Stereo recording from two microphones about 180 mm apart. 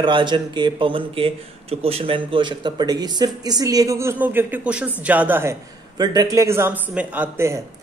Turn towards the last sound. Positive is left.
turn(degrees=-15)  # may be behind; listen again after turning